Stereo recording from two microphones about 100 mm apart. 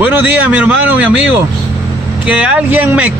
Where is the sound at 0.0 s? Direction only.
15° right (ahead or behind).